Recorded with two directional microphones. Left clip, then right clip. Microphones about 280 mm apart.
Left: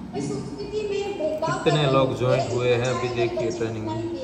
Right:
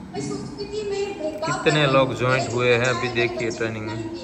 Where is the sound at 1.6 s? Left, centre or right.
Centre.